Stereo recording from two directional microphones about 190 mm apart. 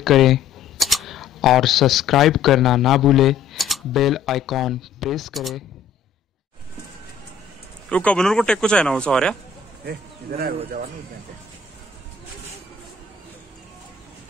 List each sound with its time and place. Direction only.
0.0 s speech: centre (ahead or behind)
7.9 s a man's voice: 5° left (ahead or behind)
9.8 s speech: 50° right (ahead or behind)